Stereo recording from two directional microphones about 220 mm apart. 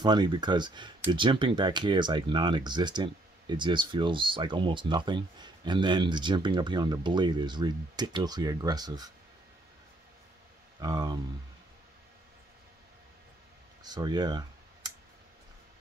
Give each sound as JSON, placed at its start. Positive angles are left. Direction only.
{"t": 0.0, "sound": "speech", "side_deg": -20}
{"t": 10.8, "sound": "speech", "side_deg": -20}
{"t": 13.8, "sound": "speech", "side_deg": -20}